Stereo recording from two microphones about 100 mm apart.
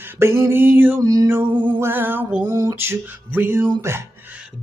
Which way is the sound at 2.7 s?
20° right (ahead or behind).